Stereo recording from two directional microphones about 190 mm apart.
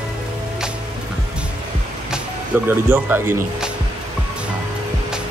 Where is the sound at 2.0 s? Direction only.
10° right (ahead or behind).